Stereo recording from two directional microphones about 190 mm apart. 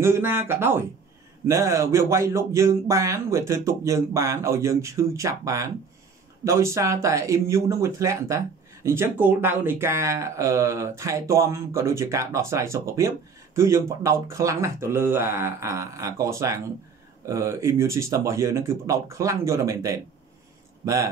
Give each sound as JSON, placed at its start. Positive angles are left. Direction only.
{"t": 0.0, "sound": "speech", "side_deg": -10}